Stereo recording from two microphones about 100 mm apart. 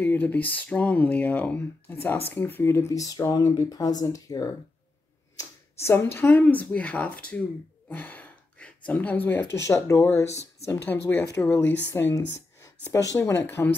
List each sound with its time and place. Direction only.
0.0 s speech: 20° left (ahead or behind)
7.9 s gasp: 15° left (ahead or behind)
9.6 s speech: 30° left (ahead or behind)